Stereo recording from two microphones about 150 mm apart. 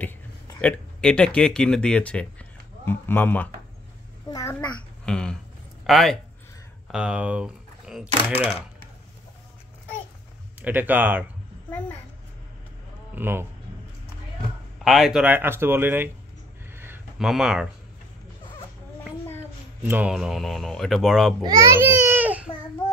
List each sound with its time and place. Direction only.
0.6 s speech: 5° left (ahead or behind)
4.3 s babbling: 20° left (ahead or behind)
4.6 s a child's voice: 5° left (ahead or behind)
10.6 s speech: 10° right (ahead or behind)
13.1 s speech: 15° right (ahead or behind)
14.8 s speech: centre (ahead or behind)
15.2 s speech: 15° right (ahead or behind)
16.7 s a sound: 15° right (ahead or behind)
17.2 s speech: 5° right (ahead or behind)
19.8 s speech: 10° right (ahead or behind)
21.4 s speech: 25° right (ahead or behind)